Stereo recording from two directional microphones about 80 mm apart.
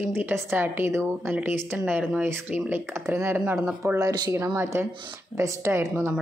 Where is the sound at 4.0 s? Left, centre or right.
Right.